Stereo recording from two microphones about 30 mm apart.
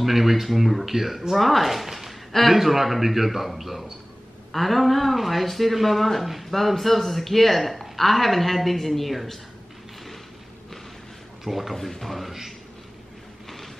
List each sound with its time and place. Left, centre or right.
0.0 s speech: centre
11.4 s speech: centre
11.7 s speech: centre